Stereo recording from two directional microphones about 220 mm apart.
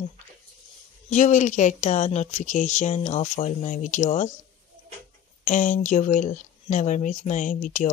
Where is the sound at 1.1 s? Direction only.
35° left (ahead or behind).